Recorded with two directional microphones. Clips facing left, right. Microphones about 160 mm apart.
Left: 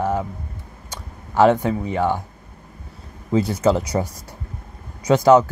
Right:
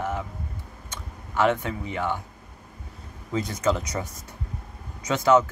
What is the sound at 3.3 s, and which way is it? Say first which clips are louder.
Speech: left 7 dB; 30° left (ahead or behind).